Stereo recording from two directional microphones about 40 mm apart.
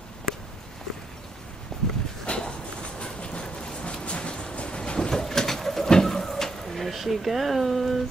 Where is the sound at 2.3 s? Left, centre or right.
Left.